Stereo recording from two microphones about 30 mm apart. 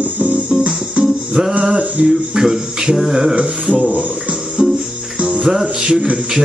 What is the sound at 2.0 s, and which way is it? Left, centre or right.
Speech, right.